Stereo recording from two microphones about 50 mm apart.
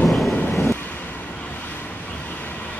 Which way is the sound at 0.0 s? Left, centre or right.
Centre.